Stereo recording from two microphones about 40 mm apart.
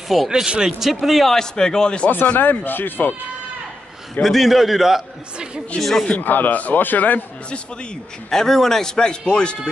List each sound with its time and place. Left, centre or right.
0.3 s speech: centre
0.8 s a man's voice: centre
1.3 s a man's voice: centre
2.3 s a man's voice: left
4.2 s a man's voice: centre
5.8 s a man's voice: centre
6.1 s a man's voice: left
8.3 s a man's voice: centre